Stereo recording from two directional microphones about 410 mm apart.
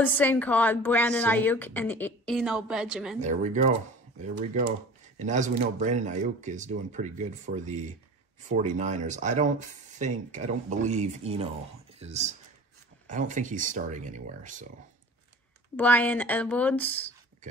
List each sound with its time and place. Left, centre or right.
0.0 s a woman's voice: centre
3.2 s speech: centre
5.2 s speech: centre
15.7 s a woman's voice: centre